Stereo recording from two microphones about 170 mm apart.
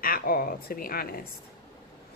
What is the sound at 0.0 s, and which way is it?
Speech, 55° left (ahead or behind).